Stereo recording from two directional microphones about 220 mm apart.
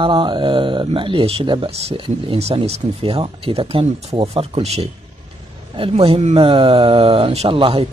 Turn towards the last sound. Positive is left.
turn(degrees=-25)  # may be behind; listen again after turning